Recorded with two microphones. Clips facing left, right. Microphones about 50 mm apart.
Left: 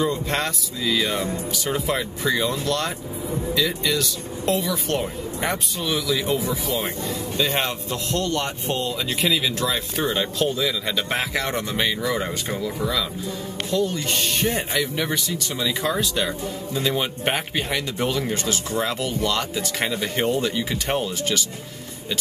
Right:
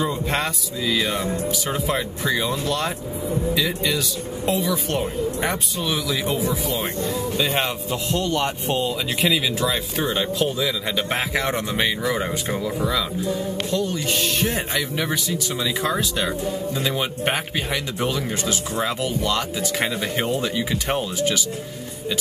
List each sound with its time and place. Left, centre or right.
0.0 s speech: centre
9.2 s speech: centre